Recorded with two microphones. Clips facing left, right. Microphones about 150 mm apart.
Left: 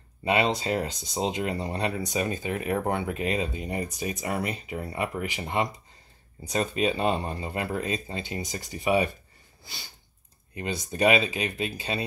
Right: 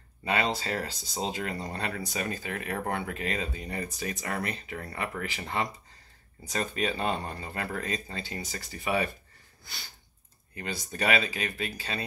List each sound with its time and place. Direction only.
0.2 s speech: 20° left (ahead or behind)
10.5 s speech: 20° left (ahead or behind)